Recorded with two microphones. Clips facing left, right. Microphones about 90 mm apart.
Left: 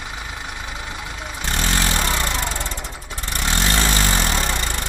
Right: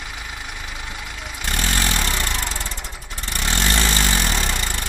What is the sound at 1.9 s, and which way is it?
Vehicle, 20° left (ahead or behind).